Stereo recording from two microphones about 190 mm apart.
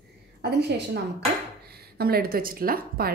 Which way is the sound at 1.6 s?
55° right (ahead or behind).